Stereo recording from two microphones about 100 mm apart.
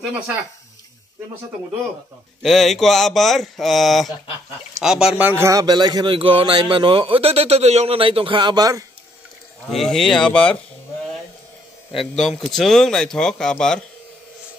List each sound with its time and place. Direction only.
2.4 s speech: centre (ahead or behind); by 5.4 s 15° right (ahead or behind)
5.4 s a man's voice: 35° right (ahead or behind)
6.1 s a man's voice: 55° right (ahead or behind); by 8.8 s 40° right (ahead or behind)
9.7 s speech: centre (ahead or behind)
11.9 s speech: centre (ahead or behind)